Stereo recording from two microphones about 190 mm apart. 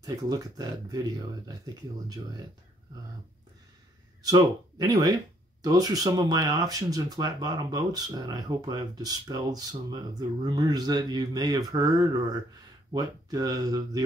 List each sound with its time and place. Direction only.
0.0 s speech: 20° right (ahead or behind)
4.2 s speech: 20° right (ahead or behind)